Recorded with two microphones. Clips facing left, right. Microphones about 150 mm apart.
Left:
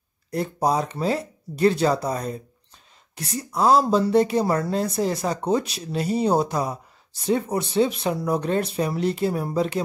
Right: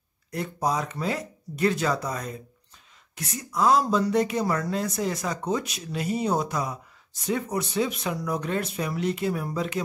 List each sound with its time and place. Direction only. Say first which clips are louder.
0.3 s speech: left 5 dB; 35° left (ahead or behind)